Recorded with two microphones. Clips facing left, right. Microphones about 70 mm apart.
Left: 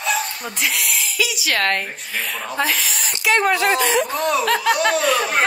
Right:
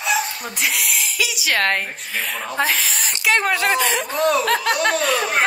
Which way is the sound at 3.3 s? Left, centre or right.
Left.